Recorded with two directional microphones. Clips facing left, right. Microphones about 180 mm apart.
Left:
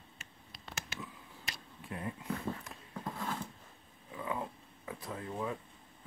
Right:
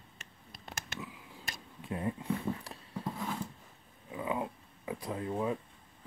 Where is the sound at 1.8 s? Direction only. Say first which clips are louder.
Right 6 dB; 25° right (ahead or behind).